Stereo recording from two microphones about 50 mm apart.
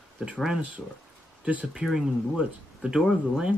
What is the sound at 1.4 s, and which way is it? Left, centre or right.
Speech, right.